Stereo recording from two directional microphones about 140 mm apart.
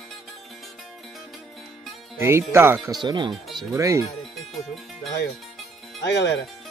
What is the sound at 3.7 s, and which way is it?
Speech, 20° right (ahead or behind).